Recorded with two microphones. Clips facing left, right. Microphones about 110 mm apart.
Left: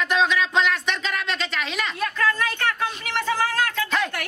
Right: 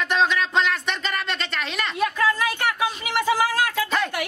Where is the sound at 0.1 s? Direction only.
Centre (ahead or behind).